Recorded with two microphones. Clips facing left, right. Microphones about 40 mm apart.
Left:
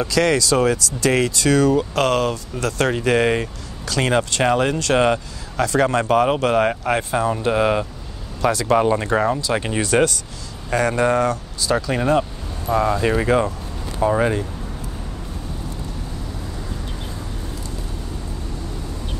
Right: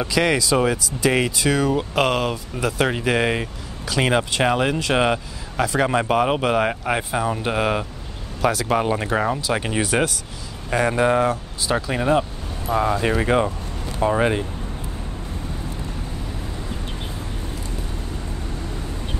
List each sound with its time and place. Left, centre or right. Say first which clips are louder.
0.0 s speech: left 2 dB; centre
13.3 s speech: left 1 dB; right